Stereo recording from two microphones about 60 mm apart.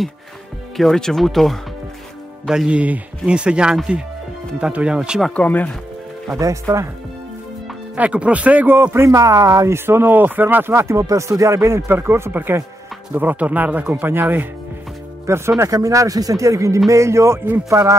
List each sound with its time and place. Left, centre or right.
0.7 s speech: centre
2.7 s speech: right
5.3 s speech: left
6.3 s speech: right
7.9 s speech: centre
8.6 s speech: right
9.1 s speech: right
9.7 s speech: right
11.0 s speech: right
12.3 s speech: right
15.2 s speech: right
15.6 s speech: right